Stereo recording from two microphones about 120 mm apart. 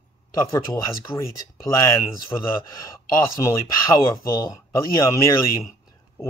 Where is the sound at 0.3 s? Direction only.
25° left (ahead or behind).